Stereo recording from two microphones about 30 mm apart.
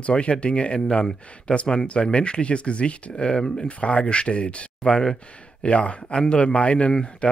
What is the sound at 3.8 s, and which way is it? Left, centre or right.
Speech, left.